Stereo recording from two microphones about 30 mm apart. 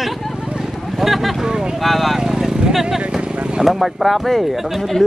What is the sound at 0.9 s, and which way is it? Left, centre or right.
Vehicle, centre.